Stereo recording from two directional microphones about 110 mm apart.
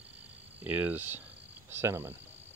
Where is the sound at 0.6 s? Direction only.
15° right (ahead or behind).